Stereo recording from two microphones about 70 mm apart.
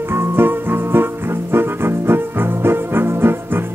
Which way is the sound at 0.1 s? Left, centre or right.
Right.